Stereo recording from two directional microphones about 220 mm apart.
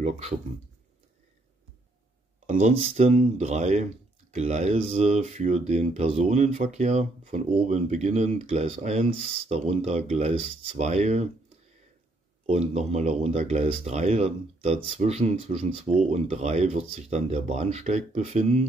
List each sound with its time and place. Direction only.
2.4 s speech: 30° right (ahead or behind)
12.4 s speech: 30° right (ahead or behind)